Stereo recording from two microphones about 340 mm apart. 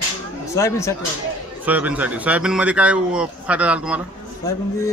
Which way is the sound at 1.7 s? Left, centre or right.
Centre.